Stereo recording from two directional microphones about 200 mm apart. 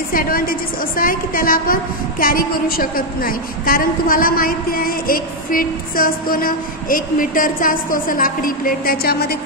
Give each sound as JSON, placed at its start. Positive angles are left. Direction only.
{"t": 0.1, "sound": "a woman's voice", "side_deg": 45}